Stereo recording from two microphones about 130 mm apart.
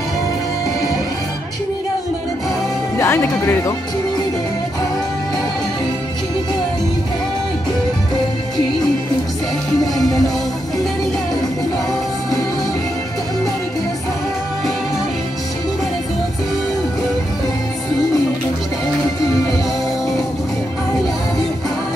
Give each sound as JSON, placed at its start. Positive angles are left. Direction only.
{"t": 3.0, "sound": "speech", "side_deg": 20}